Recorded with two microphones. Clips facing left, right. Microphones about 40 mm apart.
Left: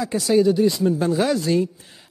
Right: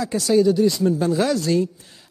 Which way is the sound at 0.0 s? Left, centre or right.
Centre.